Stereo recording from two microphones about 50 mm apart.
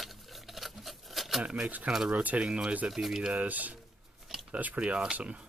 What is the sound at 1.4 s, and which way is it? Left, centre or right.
Speech, right.